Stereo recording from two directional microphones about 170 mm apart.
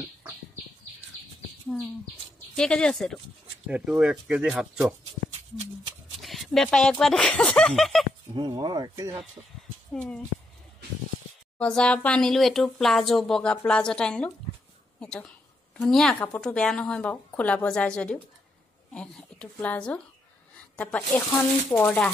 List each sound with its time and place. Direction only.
2.5 s a woman's voice: 5° left (ahead or behind)
6.2 s speech: centre (ahead or behind)
8.4 s speech: 25° right (ahead or behind)
9.9 s a woman's voice: 5° left (ahead or behind)
11.5 s a woman's voice: 5° left (ahead or behind)